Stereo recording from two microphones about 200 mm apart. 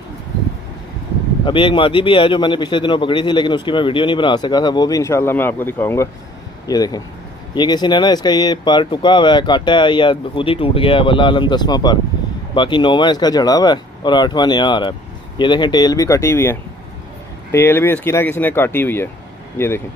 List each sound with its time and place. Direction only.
1.4 s a man's voice: 25° left (ahead or behind)